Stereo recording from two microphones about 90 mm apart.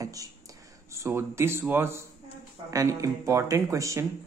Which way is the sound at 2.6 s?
35° right (ahead or behind).